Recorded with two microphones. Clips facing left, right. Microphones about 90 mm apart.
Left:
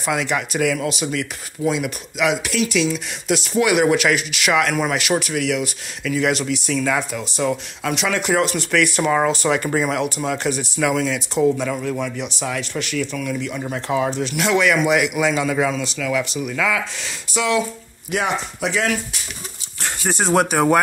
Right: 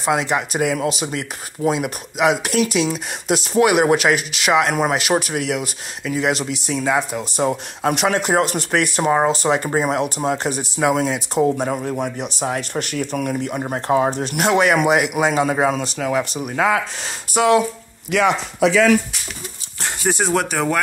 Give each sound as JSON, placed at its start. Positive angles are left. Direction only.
{"t": 0.0, "sound": "speech", "side_deg": -30}
{"t": 18.1, "sound": "speech", "side_deg": -80}
{"t": 20.1, "sound": "speech", "side_deg": -5}
{"t": 20.3, "sound": "speech", "side_deg": 10}